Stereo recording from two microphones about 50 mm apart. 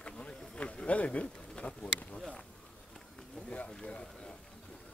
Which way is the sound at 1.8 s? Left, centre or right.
Left.